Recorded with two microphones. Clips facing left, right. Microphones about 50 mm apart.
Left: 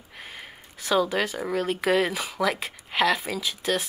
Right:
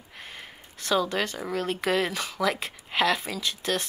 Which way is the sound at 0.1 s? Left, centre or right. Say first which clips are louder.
Left 2 dB; centre.